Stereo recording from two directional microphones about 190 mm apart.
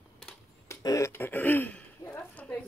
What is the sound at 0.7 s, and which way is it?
Speech, 15° left (ahead or behind).